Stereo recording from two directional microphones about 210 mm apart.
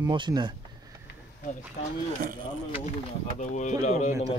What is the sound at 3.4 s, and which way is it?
Speech, 35° left (ahead or behind).